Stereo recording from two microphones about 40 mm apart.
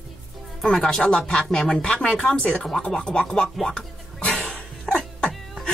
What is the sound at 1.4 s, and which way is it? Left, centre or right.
Speech, centre.